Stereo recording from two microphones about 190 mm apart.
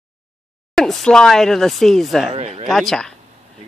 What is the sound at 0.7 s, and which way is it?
Speech, 5° left (ahead or behind).